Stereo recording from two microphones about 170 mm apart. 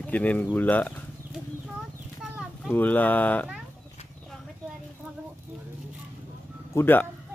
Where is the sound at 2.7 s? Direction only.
10° left (ahead or behind).